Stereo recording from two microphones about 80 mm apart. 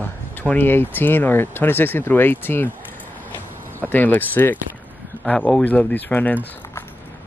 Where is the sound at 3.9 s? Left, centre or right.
Left.